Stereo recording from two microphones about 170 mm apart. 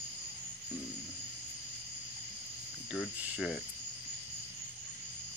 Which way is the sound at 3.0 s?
Centre (ahead or behind).